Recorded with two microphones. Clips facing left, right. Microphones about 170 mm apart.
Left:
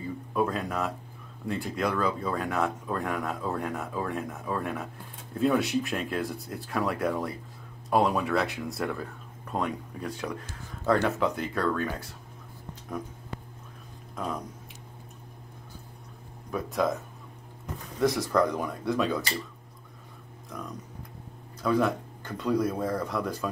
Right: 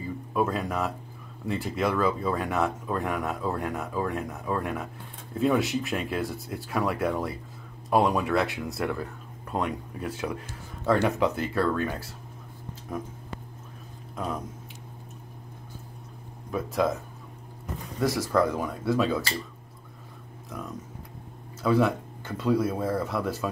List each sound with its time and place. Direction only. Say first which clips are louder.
0.3 s speech: right 1 dB; centre (ahead or behind)
17.9 s speech: even; centre (ahead or behind)
20.5 s speech: right 2 dB; 5° right (ahead or behind)